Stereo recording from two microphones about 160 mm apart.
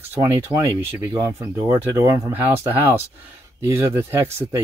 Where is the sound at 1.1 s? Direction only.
20° right (ahead or behind).